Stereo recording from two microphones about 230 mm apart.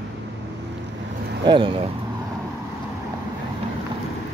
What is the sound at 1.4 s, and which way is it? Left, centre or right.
Speech, right.